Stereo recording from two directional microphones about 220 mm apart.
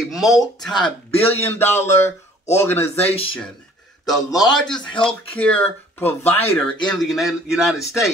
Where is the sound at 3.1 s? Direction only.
25° left (ahead or behind).